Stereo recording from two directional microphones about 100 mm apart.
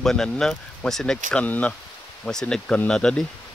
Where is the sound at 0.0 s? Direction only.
5° left (ahead or behind).